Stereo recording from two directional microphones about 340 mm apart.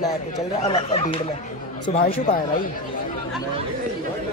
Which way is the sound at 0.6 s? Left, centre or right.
Centre.